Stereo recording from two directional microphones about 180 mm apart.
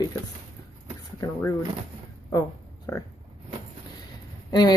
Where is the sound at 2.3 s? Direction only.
20° left (ahead or behind).